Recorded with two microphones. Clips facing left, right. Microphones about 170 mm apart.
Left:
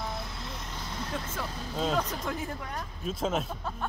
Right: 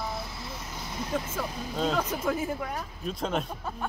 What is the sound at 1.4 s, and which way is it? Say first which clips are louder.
Speech: right 3 dB; 15° right (ahead or behind).